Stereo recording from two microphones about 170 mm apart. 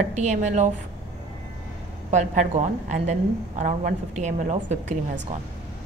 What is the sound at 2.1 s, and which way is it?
A woman's voice, 45° right (ahead or behind).